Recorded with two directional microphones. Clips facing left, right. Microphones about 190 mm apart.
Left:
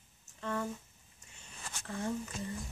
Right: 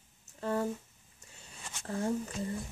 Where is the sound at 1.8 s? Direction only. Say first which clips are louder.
Right 4 dB; 40° right (ahead or behind).